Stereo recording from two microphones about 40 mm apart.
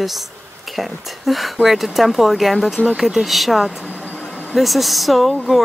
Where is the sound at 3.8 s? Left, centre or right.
Left.